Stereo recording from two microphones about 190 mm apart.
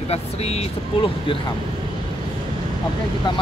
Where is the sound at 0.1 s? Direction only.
35° left (ahead or behind).